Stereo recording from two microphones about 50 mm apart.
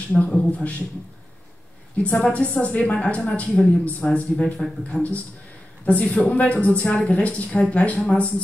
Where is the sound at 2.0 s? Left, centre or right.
Left.